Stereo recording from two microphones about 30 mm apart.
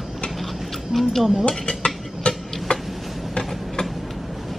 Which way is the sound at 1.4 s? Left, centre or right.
Left.